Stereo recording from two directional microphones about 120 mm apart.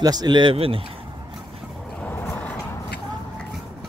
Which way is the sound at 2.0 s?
15° left (ahead or behind).